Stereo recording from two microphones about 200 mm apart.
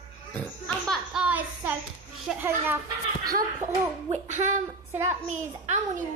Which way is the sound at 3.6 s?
40° right (ahead or behind).